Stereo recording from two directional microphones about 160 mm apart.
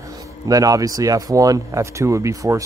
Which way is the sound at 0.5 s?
20° right (ahead or behind).